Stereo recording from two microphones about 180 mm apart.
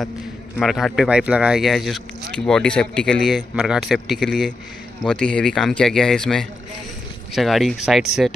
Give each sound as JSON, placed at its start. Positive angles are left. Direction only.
{"t": 0.6, "sound": "speech", "side_deg": 0}